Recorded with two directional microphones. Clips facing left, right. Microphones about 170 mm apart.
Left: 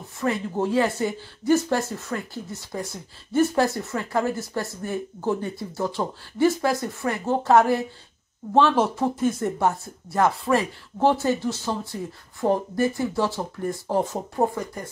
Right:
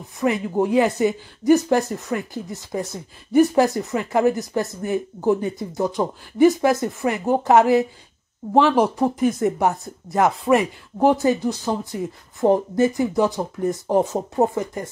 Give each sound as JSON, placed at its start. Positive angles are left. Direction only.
{"t": 0.2, "sound": "speech", "side_deg": -15}